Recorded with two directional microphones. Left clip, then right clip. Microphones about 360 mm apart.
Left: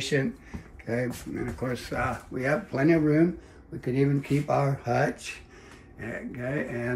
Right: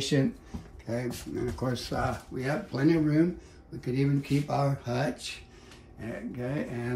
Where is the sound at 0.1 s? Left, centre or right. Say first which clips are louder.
Left 1 dB; centre.